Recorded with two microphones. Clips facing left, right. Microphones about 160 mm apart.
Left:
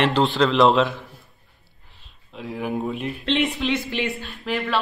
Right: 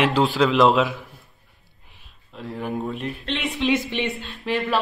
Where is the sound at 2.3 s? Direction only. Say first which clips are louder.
Left 1 dB; centre (ahead or behind).